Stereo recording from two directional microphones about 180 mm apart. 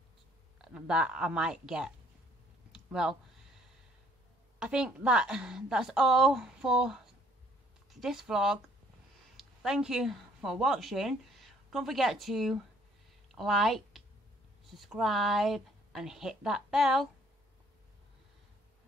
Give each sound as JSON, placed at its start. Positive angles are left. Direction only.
{"t": 0.6, "sound": "a woman's voice", "side_deg": -5}
{"t": 2.7, "sound": "a sound", "side_deg": -5}
{"t": 4.6, "sound": "a woman's voice", "side_deg": -5}